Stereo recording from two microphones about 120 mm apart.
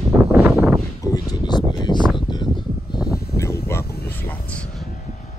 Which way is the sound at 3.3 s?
20° left (ahead or behind).